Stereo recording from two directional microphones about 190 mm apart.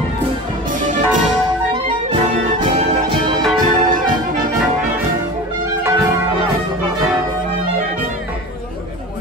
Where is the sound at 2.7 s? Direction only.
25° right (ahead or behind).